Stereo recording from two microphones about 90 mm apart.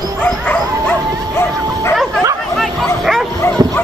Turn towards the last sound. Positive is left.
turn(degrees=0)  # may be behind; listen again after turning